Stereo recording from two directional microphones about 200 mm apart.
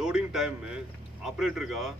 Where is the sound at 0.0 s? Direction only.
5° right (ahead or behind).